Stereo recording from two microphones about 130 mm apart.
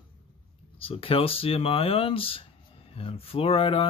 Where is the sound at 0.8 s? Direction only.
45° left (ahead or behind).